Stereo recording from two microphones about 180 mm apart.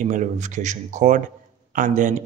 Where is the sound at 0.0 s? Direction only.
45° right (ahead or behind).